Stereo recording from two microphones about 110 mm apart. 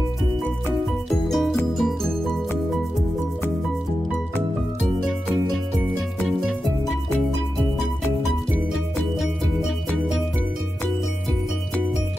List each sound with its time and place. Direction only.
1.3 s music: centre (ahead or behind)